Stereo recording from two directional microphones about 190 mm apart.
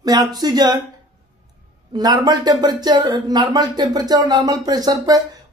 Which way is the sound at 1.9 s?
20° right (ahead or behind).